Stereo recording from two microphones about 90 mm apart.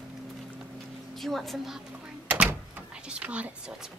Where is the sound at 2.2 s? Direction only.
20° right (ahead or behind).